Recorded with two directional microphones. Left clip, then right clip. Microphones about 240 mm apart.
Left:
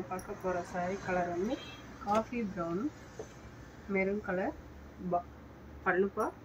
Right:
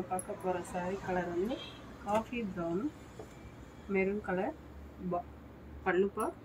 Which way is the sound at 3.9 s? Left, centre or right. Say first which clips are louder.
Even; centre.